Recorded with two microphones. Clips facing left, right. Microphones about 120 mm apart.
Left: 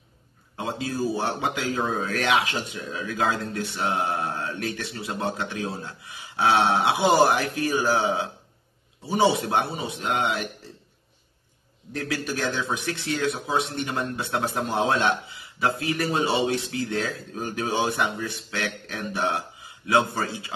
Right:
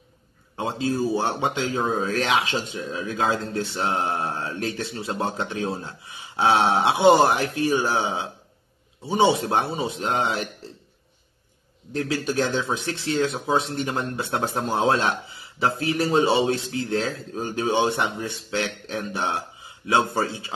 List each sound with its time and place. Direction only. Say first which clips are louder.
0.6 s speech: right 3 dB; 30° right (ahead or behind)
11.9 s speech: right 4 dB; 25° right (ahead or behind)